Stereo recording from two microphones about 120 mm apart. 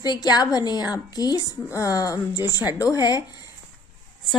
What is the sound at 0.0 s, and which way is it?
A woman's voice, 35° left (ahead or behind).